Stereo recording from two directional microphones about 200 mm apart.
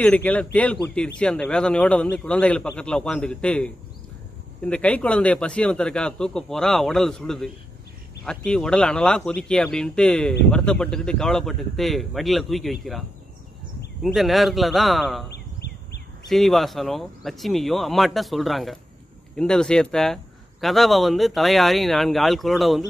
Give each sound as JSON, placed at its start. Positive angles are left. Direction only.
{"t": 0.0, "sound": "a man's voice", "side_deg": 5}
{"t": 14.0, "sound": "a man's voice", "side_deg": 0}
{"t": 15.3, "sound": "a sound", "side_deg": 55}
{"t": 16.3, "sound": "a man's voice", "side_deg": 0}